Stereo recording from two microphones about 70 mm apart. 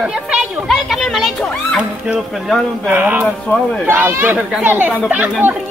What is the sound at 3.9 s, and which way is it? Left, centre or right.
Speech, right.